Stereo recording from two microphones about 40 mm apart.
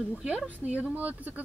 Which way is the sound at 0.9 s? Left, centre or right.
Right.